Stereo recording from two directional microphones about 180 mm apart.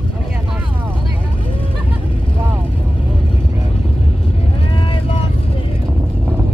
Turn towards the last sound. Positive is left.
turn(degrees=30)  # may be behind; listen again after turning